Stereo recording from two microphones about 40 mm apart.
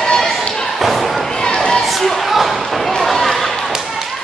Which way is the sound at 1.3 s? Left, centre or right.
Centre.